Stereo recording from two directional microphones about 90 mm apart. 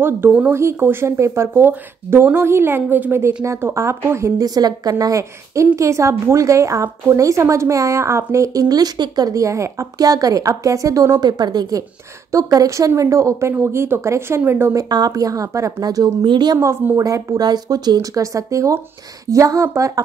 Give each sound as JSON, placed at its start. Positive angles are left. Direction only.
{"t": 0.5, "sound": "a woman's voice", "side_deg": -30}
{"t": 4.4, "sound": "a woman's voice", "side_deg": -45}
{"t": 14.8, "sound": "a woman's voice", "side_deg": -45}
{"t": 16.5, "sound": "a woman's voice", "side_deg": -30}